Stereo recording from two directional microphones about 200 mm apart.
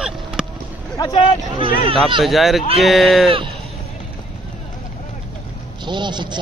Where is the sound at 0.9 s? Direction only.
20° left (ahead or behind).